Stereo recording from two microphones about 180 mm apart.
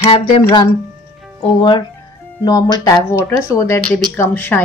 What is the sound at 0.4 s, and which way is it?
A woman's voice, 15° left (ahead or behind).